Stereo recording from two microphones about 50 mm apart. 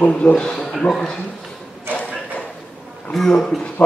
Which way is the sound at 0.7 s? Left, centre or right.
Centre.